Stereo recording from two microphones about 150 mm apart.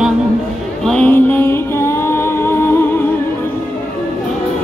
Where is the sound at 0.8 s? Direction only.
10° left (ahead or behind).